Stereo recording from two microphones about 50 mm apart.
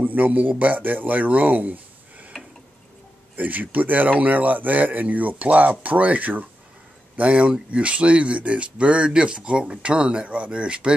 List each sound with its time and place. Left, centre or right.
0.0 s speech: right
3.3 s speech: right